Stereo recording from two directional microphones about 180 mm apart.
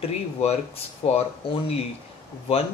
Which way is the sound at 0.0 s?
35° left (ahead or behind).